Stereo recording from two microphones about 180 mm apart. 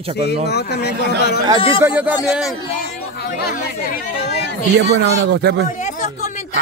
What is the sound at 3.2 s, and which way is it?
Speech, 55° left (ahead or behind).